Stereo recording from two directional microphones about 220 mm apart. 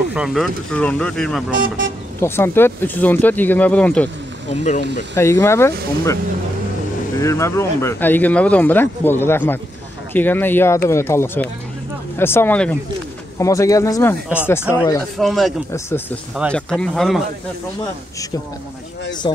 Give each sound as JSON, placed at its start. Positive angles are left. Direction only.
{"t": 0.1, "sound": "speech", "side_deg": 0}
{"t": 4.5, "sound": "speech", "side_deg": 35}
{"t": 5.1, "sound": "speech", "side_deg": 10}
{"t": 7.2, "sound": "speech", "side_deg": 15}
{"t": 15.1, "sound": "speech", "side_deg": 0}
{"t": 15.7, "sound": "speech", "side_deg": 10}
{"t": 19.2, "sound": "a man's voice", "side_deg": 20}